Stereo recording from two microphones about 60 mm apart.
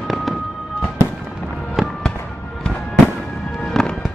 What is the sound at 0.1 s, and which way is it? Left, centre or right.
Fireworks, centre.